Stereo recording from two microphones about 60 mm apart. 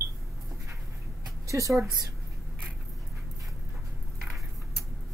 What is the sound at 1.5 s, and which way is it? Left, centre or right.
Speech, right.